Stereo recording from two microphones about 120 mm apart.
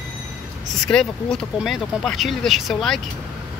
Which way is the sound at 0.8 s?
5° left (ahead or behind).